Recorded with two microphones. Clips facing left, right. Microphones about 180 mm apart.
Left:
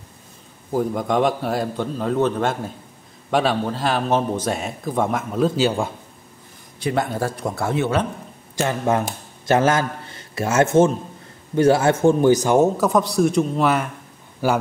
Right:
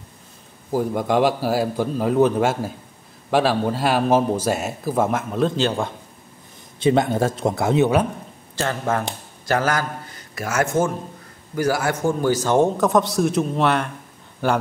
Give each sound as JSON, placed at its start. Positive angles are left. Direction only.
{"t": 0.7, "sound": "a man's voice", "side_deg": 0}
{"t": 6.8, "sound": "speech", "side_deg": -20}
{"t": 8.5, "sound": "a man's voice", "side_deg": 15}
{"t": 12.5, "sound": "a man's voice", "side_deg": 5}